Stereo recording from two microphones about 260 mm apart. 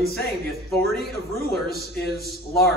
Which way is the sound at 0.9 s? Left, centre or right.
Left.